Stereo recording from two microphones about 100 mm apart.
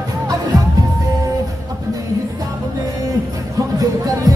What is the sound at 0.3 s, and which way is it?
Music, 40° right (ahead or behind).